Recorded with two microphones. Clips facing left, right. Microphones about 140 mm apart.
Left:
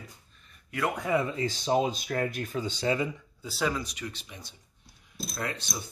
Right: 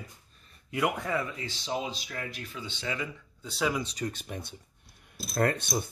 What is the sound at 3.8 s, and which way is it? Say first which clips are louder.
Speech: right 4 dB; 30° right (ahead or behind).